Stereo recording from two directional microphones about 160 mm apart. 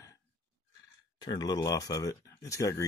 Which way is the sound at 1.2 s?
25° left (ahead or behind).